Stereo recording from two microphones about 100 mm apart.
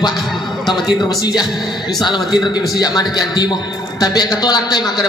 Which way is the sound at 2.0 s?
45° left (ahead or behind).